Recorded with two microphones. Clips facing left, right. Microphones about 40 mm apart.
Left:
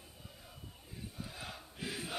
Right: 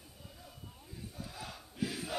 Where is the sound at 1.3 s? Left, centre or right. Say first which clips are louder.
Right 5 dB; centre.